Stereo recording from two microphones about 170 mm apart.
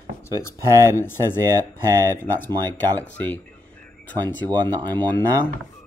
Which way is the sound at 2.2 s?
10° left (ahead or behind).